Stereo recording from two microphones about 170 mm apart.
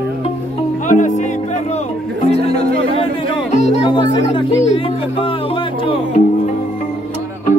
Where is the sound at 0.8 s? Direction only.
45° left (ahead or behind).